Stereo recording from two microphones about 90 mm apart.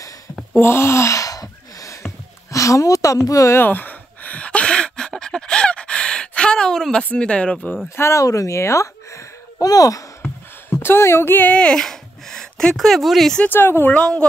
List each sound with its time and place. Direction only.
0.6 s a sound: 30° left (ahead or behind)
2.5 s a woman's voice: 35° left (ahead or behind)
3.5 s a sound: 20° left (ahead or behind)
7.1 s speech: 10° left (ahead or behind)
7.9 s speech: 30° left (ahead or behind)
10.7 s speech: 25° left (ahead or behind); by 13.4 s centre (ahead or behind)
13.4 s speech: 25° left (ahead or behind)
13.9 s speech: 10° left (ahead or behind)